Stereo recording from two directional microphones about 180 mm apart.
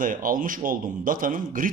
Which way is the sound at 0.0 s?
50° right (ahead or behind).